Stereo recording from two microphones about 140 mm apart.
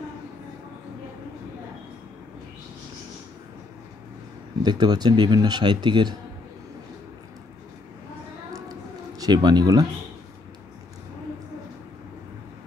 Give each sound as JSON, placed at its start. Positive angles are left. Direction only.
{"t": 4.6, "sound": "speech", "side_deg": -30}
{"t": 9.2, "sound": "speech", "side_deg": -30}